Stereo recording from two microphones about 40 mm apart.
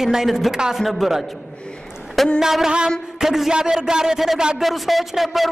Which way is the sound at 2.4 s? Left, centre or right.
Centre.